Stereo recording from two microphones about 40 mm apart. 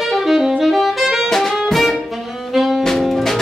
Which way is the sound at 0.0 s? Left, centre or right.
Centre.